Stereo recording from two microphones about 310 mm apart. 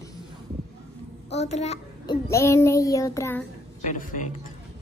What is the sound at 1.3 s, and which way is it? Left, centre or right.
Speech, left.